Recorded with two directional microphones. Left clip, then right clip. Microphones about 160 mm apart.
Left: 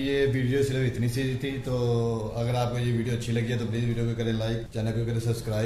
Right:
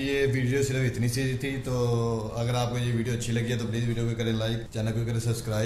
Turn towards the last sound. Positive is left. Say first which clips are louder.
# left 1 dB
turn(degrees=-5)  # may be behind; listen again after turning